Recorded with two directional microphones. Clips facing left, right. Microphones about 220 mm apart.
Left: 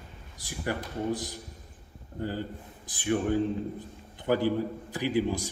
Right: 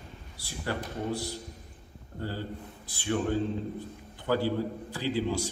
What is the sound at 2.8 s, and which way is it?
A man's voice, 15° left (ahead or behind).